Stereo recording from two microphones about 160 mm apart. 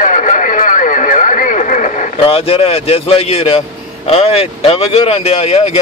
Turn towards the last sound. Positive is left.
turn(degrees=40)  # may be behind; listen again after turning